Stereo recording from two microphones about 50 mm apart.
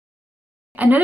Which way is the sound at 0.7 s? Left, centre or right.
Right.